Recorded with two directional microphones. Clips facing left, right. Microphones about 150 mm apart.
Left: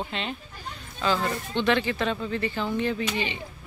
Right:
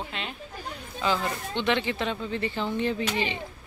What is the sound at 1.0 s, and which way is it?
Speech, 20° right (ahead or behind).